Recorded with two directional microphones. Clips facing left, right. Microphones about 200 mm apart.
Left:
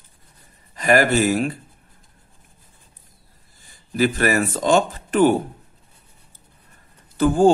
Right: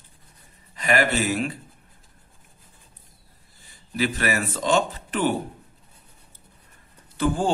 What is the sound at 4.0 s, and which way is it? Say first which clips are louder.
Speech: left 6 dB; 45° left (ahead or behind).